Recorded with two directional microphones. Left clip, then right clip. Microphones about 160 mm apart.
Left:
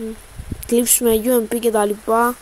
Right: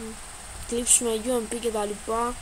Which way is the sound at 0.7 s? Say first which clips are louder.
Left 9 dB; 50° left (ahead or behind).